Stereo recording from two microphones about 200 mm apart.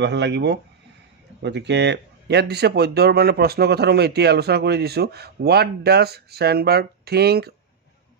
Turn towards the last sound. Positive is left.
turn(degrees=-50)  # may be behind; listen again after turning